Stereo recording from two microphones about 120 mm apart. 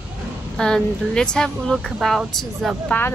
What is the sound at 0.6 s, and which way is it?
Speech, 5° left (ahead or behind).